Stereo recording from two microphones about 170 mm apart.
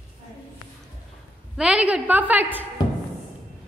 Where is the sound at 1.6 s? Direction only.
5° right (ahead or behind).